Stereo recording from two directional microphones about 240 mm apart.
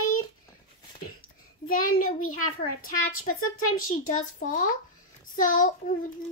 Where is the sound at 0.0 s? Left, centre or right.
Left.